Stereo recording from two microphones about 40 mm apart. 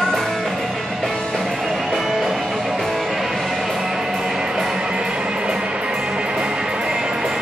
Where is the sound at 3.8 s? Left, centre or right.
Centre.